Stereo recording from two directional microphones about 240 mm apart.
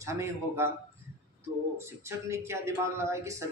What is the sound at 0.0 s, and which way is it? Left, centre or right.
Speech, centre.